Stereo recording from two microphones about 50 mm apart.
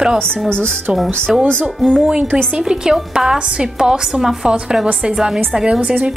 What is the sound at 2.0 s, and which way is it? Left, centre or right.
Speech, right.